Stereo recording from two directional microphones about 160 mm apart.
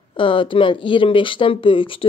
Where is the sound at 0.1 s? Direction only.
30° left (ahead or behind).